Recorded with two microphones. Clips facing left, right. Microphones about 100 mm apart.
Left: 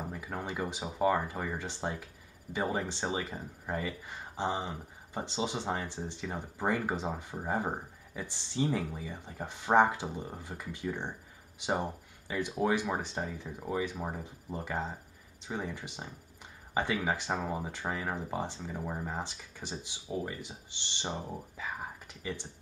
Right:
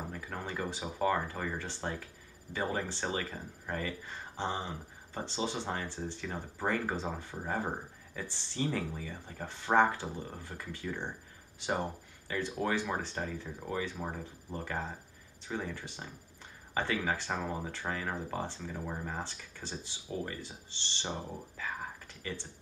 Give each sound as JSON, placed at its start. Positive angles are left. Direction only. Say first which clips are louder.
{"t": 0.1, "sound": "speech", "louder": "left 2 dB", "side_deg": 15}